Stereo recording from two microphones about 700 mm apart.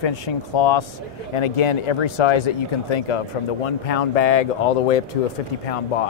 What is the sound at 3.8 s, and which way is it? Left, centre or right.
Speech, left.